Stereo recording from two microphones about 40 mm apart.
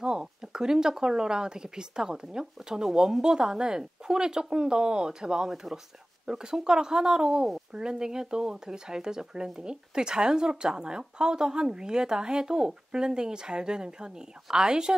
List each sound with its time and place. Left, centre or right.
0.0 s speech: centre